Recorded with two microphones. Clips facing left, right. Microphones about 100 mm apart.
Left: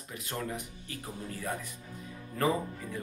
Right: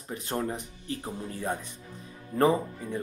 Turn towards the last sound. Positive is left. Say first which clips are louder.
# right 4 dB
turn(degrees=-30)  # may be behind; listen again after turning